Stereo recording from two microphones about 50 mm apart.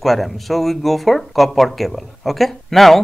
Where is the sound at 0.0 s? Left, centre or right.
Centre.